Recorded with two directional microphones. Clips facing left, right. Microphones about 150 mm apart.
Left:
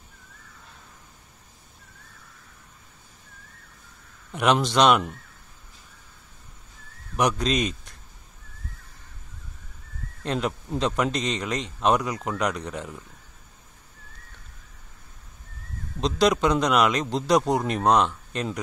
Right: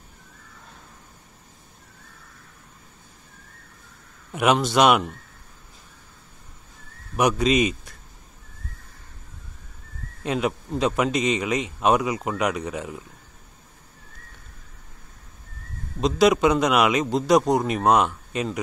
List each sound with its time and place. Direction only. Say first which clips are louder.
4.3 s a man's voice: right 2 dB; 5° right (ahead or behind)
7.2 s a man's voice: right 4 dB; 5° right (ahead or behind)
10.2 s a man's voice: right 3 dB; 5° right (ahead or behind)
16.0 s a man's voice: right 3 dB; 5° right (ahead or behind)